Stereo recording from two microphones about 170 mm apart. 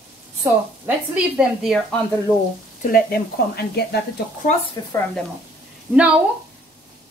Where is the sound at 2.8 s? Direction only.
60° left (ahead or behind).